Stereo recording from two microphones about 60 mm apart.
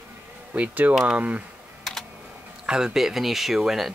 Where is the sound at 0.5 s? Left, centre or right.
Right.